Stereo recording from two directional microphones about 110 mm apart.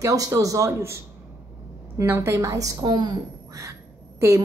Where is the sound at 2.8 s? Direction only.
40° right (ahead or behind).